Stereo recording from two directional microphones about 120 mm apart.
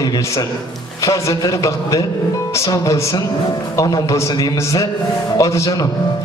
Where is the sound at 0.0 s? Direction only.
30° left (ahead or behind).